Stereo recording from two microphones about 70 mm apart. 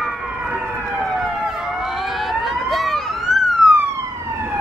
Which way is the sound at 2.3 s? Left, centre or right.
Centre.